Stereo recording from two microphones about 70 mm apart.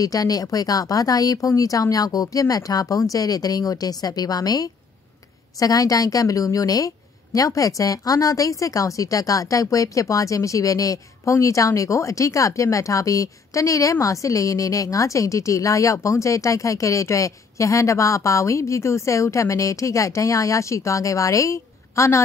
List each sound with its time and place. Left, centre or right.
0.0 s speech: left